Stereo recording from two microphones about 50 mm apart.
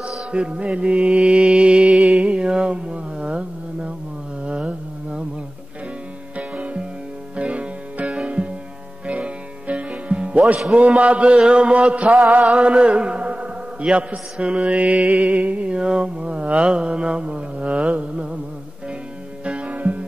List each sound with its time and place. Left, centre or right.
0.3 s mantra: right
2.1 s a sound: right
4.5 s humming: centre
6.3 s music: right
10.7 s mantra: right
11.3 s a sound: centre
12.6 s mantra: right
19.4 s music: right